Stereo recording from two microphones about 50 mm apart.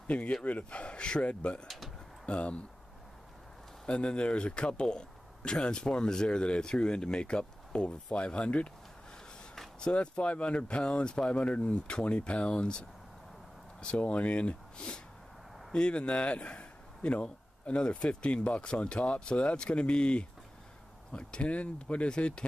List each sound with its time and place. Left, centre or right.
0.0 s speech: left
3.8 s speech: left
9.8 s speech: centre